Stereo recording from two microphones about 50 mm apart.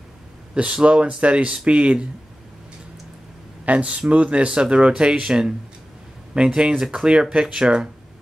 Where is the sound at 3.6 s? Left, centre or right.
Right.